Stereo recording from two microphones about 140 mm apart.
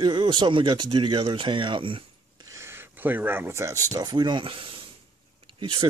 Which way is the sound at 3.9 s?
30° right (ahead or behind).